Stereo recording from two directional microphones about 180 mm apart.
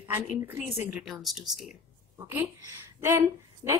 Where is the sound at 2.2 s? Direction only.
15° right (ahead or behind).